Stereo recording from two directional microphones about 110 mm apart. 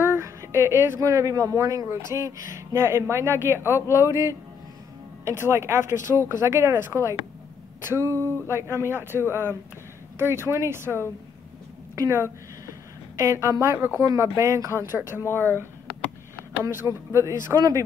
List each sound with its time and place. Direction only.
0.0 s a sound: 25° right (ahead or behind)
0.7 s speech: 20° right (ahead or behind)
3.7 s speech: 25° left (ahead or behind)
4.1 s a woman's voice: 25° right (ahead or behind)
15.2 s speech: 20° left (ahead or behind)
16.3 s a sound: 30° right (ahead or behind)
17.1 s speech: 25° right (ahead or behind)